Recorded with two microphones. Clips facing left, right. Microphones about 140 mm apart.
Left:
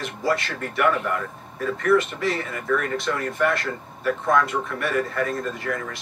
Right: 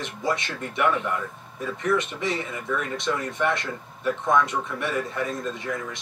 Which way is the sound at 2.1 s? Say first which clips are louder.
Left 2 dB; 15° right (ahead or behind).